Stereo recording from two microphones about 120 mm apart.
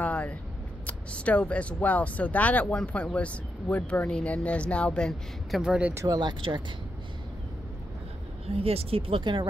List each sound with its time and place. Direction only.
0.0 s a sound: 10° left (ahead or behind)
0.8 s speech: 10° left (ahead or behind)
5.6 s speech: 10° right (ahead or behind)
5.9 s speech: 35° right (ahead or behind)
8.6 s speech: 55° right (ahead or behind)